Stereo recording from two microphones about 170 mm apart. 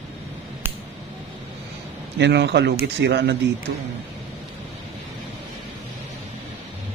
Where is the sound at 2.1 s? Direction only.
90° right.